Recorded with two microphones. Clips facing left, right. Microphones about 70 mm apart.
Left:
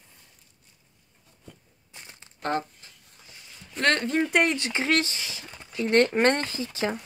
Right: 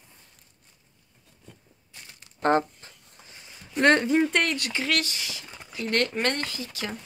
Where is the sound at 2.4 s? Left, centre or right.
Right.